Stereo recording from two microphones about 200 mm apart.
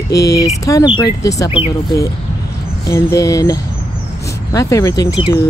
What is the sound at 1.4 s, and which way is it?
Speech, 30° left (ahead or behind).